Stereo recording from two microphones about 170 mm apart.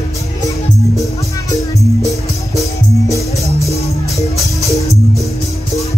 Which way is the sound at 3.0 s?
20° left (ahead or behind).